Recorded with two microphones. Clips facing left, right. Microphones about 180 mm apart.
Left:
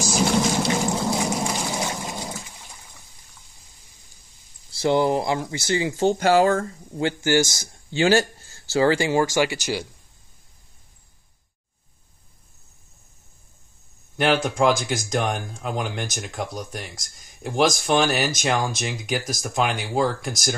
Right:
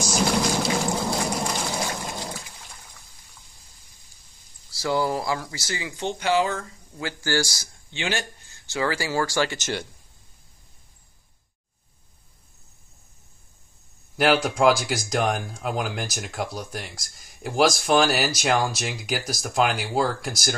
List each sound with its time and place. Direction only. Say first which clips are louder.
0.0 s a sound: left 2 dB; centre (ahead or behind)
4.6 s speech: left 5 dB; 25° left (ahead or behind); by 6.6 s 45° left (ahead or behind)
7.0 s speech: left 6 dB; 25° left (ahead or behind)
7.9 s speech: left 10 dB; 40° left (ahead or behind); by 9.8 s 10° left (ahead or behind)
14.1 s speech: even; 5° right (ahead or behind)